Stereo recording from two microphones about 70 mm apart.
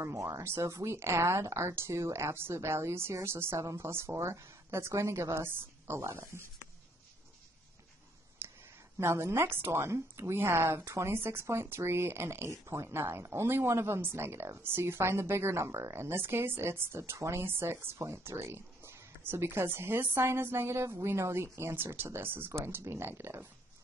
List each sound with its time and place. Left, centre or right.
0.0 s a woman's voice: right
8.4 s a sound: right
8.9 s a woman's voice: right